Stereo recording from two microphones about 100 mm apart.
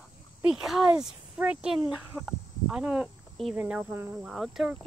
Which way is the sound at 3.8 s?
25° right (ahead or behind).